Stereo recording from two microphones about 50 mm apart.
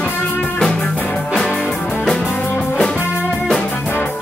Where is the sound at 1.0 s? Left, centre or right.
Left.